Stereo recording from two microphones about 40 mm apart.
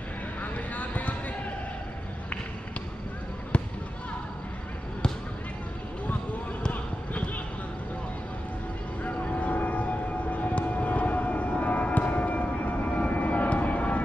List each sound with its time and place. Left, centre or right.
0.4 s vehicle: left
3.5 s fireworks: left
9.0 s vehicle: left